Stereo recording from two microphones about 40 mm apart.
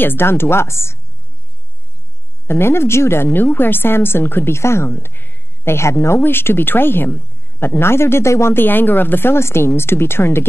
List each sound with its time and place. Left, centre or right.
0.0 s a woman's voice: left
2.4 s speech: left
3.5 s a woman's voice: left
5.7 s a woman's voice: left
7.8 s speech: left
8.6 s a woman's voice: left